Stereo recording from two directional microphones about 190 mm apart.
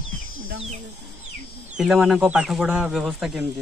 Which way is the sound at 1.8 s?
Centre (ahead or behind).